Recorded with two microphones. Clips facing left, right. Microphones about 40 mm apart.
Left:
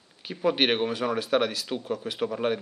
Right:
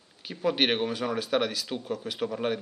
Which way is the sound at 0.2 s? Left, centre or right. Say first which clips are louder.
Left 2 dB; centre.